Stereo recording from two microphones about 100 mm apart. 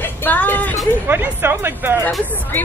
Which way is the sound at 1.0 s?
20° right (ahead or behind).